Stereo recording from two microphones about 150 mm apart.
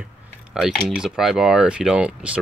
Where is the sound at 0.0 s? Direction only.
5° right (ahead or behind).